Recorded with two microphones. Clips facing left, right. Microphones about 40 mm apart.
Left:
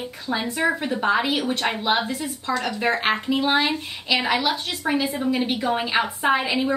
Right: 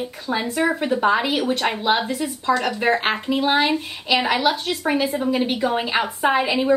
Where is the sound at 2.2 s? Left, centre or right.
Centre.